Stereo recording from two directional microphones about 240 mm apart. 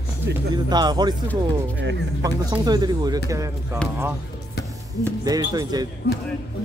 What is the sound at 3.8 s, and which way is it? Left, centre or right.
Speech, centre.